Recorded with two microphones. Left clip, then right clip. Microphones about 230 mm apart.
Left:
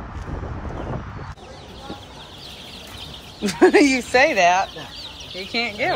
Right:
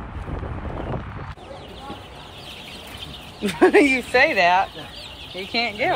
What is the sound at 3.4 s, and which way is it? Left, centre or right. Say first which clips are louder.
Speech: left 1 dB; centre.